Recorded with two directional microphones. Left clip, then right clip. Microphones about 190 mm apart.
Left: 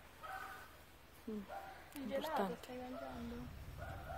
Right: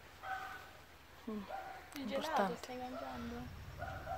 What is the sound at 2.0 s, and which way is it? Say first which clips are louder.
Speech: right 4 dB; 20° right (ahead or behind).